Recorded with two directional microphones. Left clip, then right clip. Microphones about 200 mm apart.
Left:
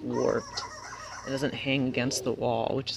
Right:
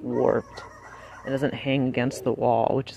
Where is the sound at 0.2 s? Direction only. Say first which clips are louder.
Right 5 dB; 20° right (ahead or behind).